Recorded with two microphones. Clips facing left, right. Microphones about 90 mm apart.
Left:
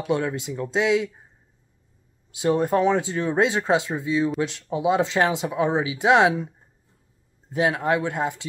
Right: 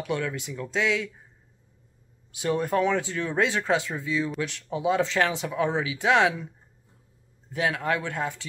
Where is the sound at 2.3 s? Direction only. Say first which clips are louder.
Left 4 dB; 25° left (ahead or behind).